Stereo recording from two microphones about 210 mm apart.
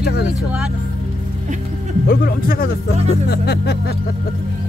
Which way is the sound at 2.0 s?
45° left (ahead or behind).